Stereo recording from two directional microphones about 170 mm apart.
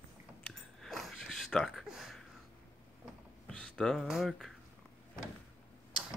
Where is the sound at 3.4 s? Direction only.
5° left (ahead or behind).